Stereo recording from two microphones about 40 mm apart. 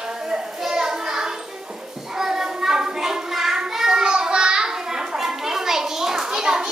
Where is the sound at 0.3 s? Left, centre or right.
Centre.